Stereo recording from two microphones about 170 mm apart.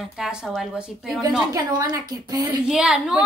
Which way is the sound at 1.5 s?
20° right (ahead or behind).